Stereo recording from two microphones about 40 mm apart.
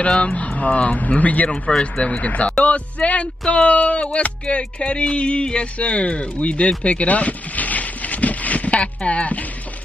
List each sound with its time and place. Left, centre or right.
0.1 s speech: left
1.5 s speech: left
6.8 s a sound: left